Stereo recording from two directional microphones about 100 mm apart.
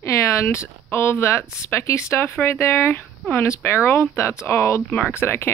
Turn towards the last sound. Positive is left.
turn(degrees=25)  # may be behind; listen again after turning